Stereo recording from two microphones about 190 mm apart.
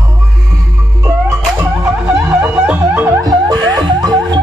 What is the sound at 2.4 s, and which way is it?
Music, 10° right (ahead or behind).